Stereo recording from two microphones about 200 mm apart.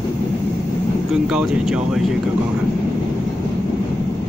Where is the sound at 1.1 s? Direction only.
Centre (ahead or behind).